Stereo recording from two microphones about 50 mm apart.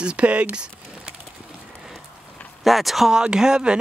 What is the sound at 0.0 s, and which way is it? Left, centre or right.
Speech, right.